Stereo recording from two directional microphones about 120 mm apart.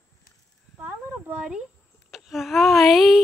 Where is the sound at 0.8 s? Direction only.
15° right (ahead or behind).